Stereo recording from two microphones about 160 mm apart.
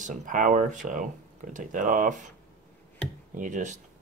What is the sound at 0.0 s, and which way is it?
Speech, 50° right (ahead or behind).